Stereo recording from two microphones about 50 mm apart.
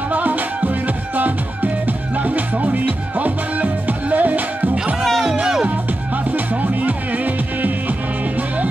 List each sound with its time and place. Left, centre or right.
0.1 s music: right
5.2 s music: centre
6.3 s music: right